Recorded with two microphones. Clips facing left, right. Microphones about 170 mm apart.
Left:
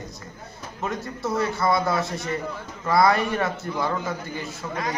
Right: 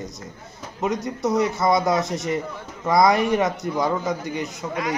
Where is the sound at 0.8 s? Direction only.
20° right (ahead or behind).